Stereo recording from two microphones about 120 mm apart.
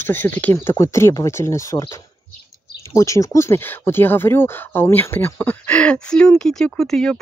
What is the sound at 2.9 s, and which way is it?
Speech, 25° left (ahead or behind).